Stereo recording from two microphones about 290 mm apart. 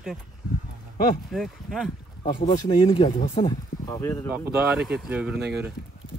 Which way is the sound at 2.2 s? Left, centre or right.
Centre.